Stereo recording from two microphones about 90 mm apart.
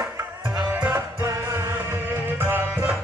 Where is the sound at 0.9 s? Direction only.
35° right (ahead or behind).